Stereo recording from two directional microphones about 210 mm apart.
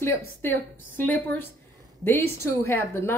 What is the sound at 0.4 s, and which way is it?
A woman's voice, 10° left (ahead or behind).